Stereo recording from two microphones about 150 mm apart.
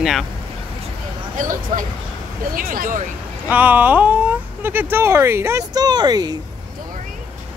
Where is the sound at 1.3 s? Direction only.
60° right (ahead or behind).